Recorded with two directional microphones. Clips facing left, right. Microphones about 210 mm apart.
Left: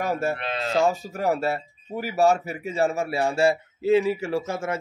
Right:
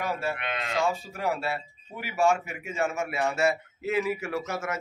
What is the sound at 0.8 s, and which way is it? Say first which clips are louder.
Speech: left 5 dB; 40° left (ahead or behind).